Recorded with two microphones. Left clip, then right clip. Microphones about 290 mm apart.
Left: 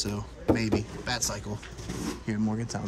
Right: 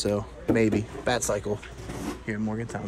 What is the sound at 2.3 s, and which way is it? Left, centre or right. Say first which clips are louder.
Speech: right 1 dB; centre.